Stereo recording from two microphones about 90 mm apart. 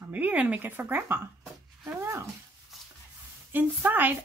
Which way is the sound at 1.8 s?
30° right (ahead or behind).